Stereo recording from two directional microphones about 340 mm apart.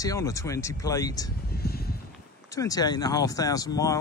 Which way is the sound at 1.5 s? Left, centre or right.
Left.